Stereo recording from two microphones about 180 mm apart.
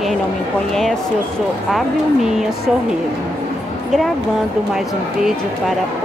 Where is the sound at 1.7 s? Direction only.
Centre (ahead or behind).